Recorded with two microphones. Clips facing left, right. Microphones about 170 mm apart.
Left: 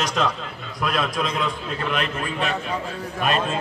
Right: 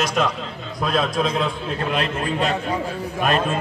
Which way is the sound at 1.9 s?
40° right (ahead or behind).